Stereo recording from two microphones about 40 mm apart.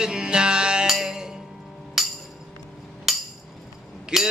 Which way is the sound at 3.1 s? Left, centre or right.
Centre.